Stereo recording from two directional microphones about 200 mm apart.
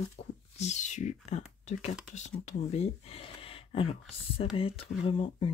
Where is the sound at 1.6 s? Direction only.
35° left (ahead or behind).